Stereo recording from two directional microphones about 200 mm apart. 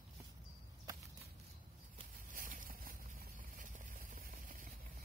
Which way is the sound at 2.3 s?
40° right (ahead or behind).